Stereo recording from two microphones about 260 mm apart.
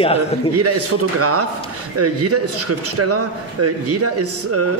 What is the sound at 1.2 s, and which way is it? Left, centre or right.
A man's voice, right.